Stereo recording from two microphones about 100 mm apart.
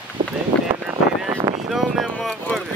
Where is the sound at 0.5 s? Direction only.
10° left (ahead or behind).